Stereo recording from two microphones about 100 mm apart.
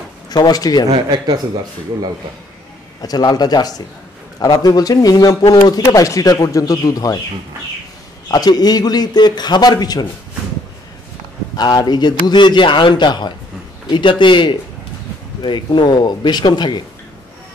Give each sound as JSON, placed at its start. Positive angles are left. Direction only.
{"t": 0.3, "sound": "a man's voice", "side_deg": 40}
{"t": 1.1, "sound": "speech", "side_deg": -45}
{"t": 3.0, "sound": "speech", "side_deg": 40}
{"t": 8.3, "sound": "a man's voice", "side_deg": 40}
{"t": 11.5, "sound": "a man's voice", "side_deg": 45}